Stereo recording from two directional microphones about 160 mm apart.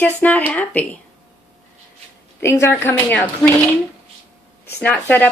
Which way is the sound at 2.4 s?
15° left (ahead or behind).